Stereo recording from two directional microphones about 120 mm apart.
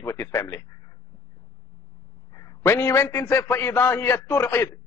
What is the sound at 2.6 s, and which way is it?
A man's voice, 20° left (ahead or behind).